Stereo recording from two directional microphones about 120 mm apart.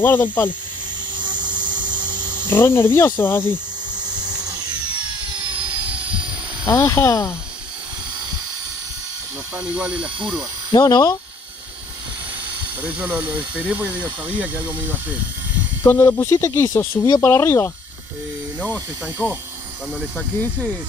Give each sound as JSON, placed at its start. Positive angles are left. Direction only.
{"t": 0.0, "sound": "speech", "side_deg": 15}
{"t": 1.1, "sound": "a sound", "side_deg": -40}
{"t": 2.5, "sound": "speech", "side_deg": 20}
{"t": 4.2, "sound": "a sound", "side_deg": -35}
{"t": 6.8, "sound": "speech", "side_deg": 25}
{"t": 9.8, "sound": "speech", "side_deg": -10}
{"t": 10.7, "sound": "speech", "side_deg": 30}
{"t": 12.8, "sound": "speech", "side_deg": -10}
{"t": 15.9, "sound": "speech", "side_deg": 20}
{"t": 19.2, "sound": "speech", "side_deg": 5}